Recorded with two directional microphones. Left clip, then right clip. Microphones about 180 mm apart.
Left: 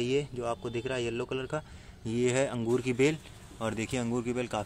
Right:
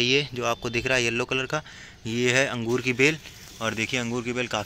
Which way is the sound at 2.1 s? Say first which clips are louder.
Right 6 dB; 5° left (ahead or behind).